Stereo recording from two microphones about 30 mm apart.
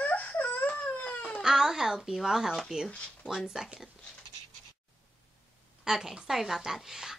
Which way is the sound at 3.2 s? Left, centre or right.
Left.